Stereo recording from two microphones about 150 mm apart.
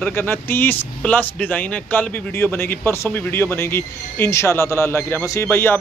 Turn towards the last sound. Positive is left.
turn(degrees=15)  # may be behind; listen again after turning